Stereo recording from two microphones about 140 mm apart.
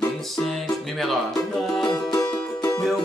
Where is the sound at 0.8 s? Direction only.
Centre (ahead or behind).